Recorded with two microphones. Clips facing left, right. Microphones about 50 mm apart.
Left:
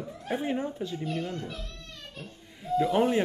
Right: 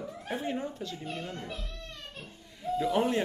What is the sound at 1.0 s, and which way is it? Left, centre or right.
Speech, centre.